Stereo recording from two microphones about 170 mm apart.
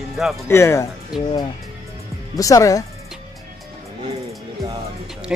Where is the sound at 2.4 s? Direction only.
20° left (ahead or behind).